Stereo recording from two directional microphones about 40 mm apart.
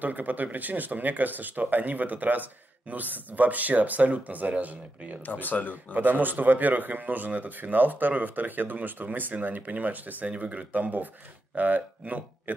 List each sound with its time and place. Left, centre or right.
0.0 s speech: right
5.2 s speech: left
5.9 s speech: right